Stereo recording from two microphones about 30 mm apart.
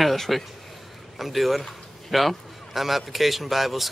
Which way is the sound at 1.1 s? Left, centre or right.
Centre.